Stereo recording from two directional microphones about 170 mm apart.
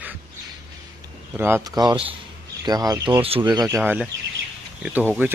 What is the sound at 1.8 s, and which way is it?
Speech, 25° right (ahead or behind).